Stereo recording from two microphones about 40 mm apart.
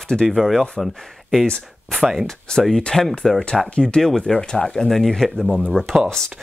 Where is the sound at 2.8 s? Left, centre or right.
Centre.